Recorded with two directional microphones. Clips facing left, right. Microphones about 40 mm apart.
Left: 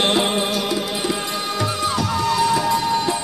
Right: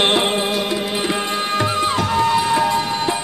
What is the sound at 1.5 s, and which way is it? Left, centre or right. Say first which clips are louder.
Music: right 3 dB; right.